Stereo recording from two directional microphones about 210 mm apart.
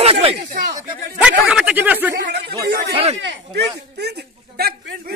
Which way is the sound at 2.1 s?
55° right (ahead or behind).